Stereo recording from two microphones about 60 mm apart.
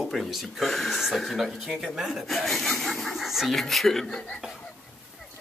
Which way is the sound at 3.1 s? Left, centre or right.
Centre.